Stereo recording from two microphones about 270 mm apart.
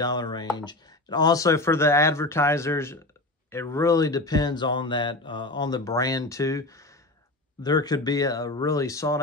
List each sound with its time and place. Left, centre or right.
0.0 s speech: centre